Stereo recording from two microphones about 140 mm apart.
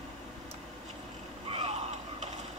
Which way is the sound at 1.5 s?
45° right (ahead or behind).